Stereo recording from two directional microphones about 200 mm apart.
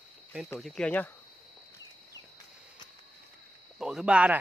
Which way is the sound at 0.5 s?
Centre (ahead or behind).